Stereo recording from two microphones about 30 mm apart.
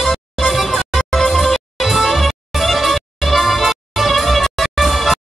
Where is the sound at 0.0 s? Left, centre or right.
Centre.